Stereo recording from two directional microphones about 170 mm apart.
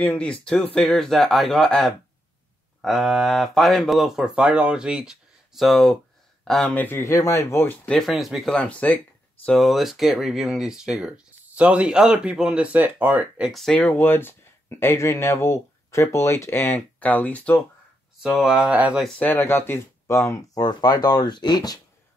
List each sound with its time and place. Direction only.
0.0 s speech: 5° left (ahead or behind)
18.2 s speech: centre (ahead or behind)
19.0 s speech: 10° left (ahead or behind); by 21.7 s 25° left (ahead or behind)